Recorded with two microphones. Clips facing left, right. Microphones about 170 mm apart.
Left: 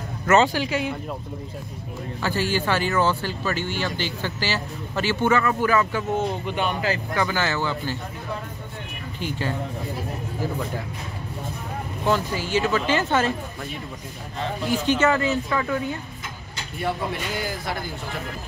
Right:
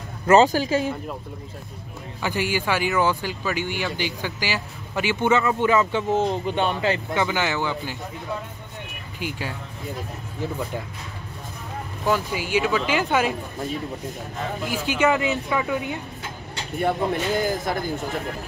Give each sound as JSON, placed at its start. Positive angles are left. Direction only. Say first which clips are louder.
{"t": 0.3, "sound": "speech", "louder": "right 3 dB", "side_deg": -40}
{"t": 2.2, "sound": "speech", "louder": "even", "side_deg": -15}
{"t": 9.2, "sound": "speech", "louder": "left 3 dB", "side_deg": -10}
{"t": 12.1, "sound": "speech", "louder": "even", "side_deg": -10}
{"t": 14.4, "sound": "speech", "louder": "left 3 dB", "side_deg": -5}
{"t": 16.7, "sound": "speech", "louder": "right 4 dB", "side_deg": -50}